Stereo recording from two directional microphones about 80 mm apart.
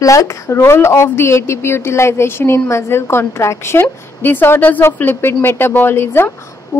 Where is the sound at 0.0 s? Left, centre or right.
Left.